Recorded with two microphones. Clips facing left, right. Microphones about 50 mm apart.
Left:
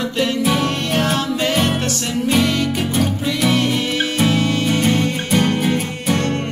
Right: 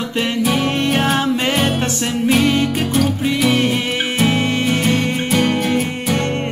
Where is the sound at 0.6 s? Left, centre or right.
Centre.